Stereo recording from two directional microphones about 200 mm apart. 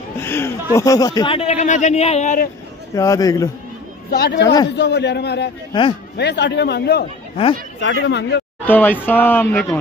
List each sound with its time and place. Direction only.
0.2 s a sound: 10° left (ahead or behind)
0.7 s speech: 15° left (ahead or behind); by 2.5 s 40° left (ahead or behind)
2.9 s speech: 15° left (ahead or behind)
4.1 s a man's voice: 55° left (ahead or behind)
5.7 s speech: 25° left (ahead or behind)
6.1 s a man's voice: 55° left (ahead or behind)
8.6 s speech: 10° left (ahead or behind)